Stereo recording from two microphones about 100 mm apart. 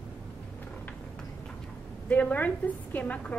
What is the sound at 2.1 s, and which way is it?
A woman's voice, 15° left (ahead or behind).